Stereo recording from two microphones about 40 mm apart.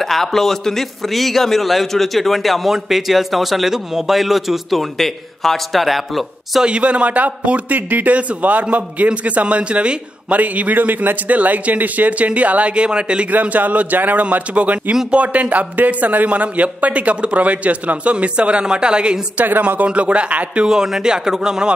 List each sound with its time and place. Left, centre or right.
0.0 s a man's voice: centre
6.6 s a man's voice: right
13.3 s a man's voice: right
19.3 s a man's voice: right
19.9 s a man's voice: right
20.6 s speech: centre